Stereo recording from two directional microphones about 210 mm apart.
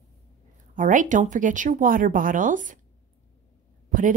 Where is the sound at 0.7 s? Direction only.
40° right (ahead or behind).